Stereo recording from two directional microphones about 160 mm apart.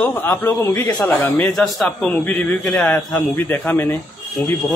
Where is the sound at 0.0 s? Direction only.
15° left (ahead or behind).